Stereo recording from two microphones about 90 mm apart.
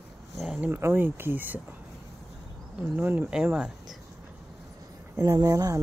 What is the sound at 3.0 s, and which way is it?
Speech, 20° right (ahead or behind).